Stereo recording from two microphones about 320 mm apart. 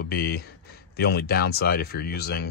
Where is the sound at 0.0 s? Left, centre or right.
Left.